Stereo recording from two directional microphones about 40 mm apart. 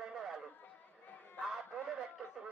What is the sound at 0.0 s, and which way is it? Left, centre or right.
Run, centre.